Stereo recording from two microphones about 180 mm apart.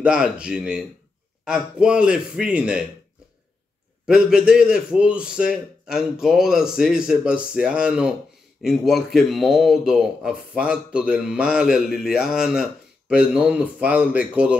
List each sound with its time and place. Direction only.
0.0 s a man's voice: 5° right (ahead or behind)
4.0 s a man's voice: 5° right (ahead or behind)